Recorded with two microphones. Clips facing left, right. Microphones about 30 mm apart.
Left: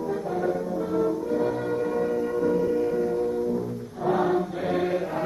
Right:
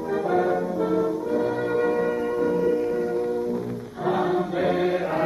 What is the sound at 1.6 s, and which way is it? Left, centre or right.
Music, right.